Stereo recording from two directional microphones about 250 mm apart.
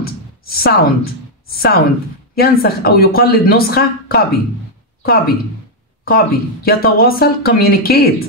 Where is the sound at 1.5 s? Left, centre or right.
Left.